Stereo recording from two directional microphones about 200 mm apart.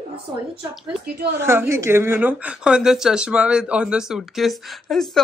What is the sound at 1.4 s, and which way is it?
Speech, 10° right (ahead or behind).